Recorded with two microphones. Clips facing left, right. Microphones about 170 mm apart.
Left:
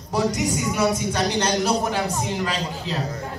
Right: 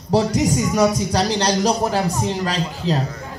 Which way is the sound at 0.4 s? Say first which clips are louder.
Right 5 dB; 40° right (ahead or behind).